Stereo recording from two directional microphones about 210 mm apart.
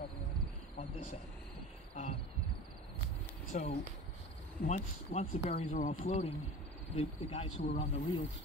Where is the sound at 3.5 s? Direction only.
35° left (ahead or behind).